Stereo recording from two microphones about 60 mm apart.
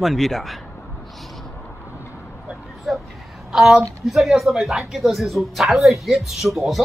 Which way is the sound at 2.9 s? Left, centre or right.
Centre.